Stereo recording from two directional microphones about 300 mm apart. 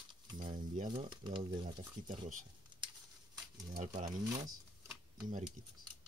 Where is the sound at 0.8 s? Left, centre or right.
Centre.